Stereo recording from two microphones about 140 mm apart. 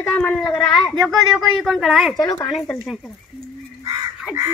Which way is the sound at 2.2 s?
30° left (ahead or behind).